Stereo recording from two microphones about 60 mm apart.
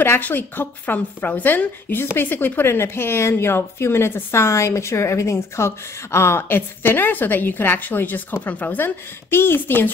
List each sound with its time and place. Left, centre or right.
0.0 s a woman's voice: left